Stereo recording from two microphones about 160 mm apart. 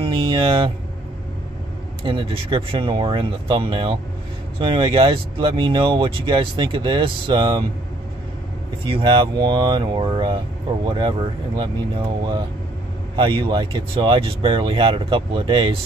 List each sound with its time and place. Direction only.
0.0 s vehicle: 35° right (ahead or behind)
2.0 s speech: 35° right (ahead or behind)
8.8 s speech: 30° right (ahead or behind)